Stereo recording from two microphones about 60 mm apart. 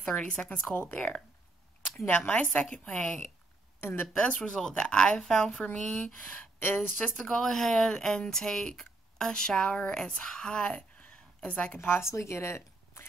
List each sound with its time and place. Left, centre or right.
0.0 s a woman's voice: centre
3.8 s speech: left
4.2 s a woman's voice: centre
4.5 s speech: centre
6.0 s a woman's voice: left
7.2 s speech: centre
10.7 s a sound: left
12.0 s speech: left